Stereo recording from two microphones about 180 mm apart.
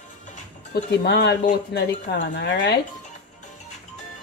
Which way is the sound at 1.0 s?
70° left (ahead or behind).